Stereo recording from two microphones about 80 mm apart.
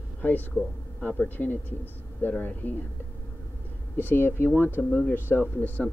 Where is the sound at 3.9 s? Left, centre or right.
Left.